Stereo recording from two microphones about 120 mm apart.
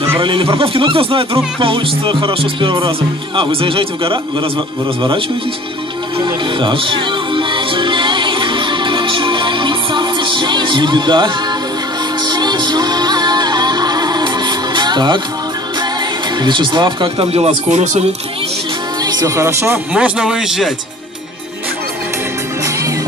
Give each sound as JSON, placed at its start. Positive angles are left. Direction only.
{"t": 0.2, "sound": "speech", "side_deg": -45}
{"t": 6.1, "sound": "music", "side_deg": -45}
{"t": 16.3, "sound": "speech", "side_deg": -40}
{"t": 17.3, "sound": "speech", "side_deg": -55}
{"t": 19.0, "sound": "speech", "side_deg": -30}